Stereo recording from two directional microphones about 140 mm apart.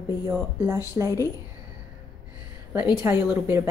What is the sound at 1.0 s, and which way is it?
Speech, 20° right (ahead or behind).